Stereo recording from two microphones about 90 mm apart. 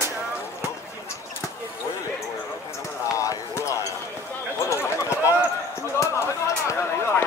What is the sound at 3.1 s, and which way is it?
Clip-clop, 35° left (ahead or behind).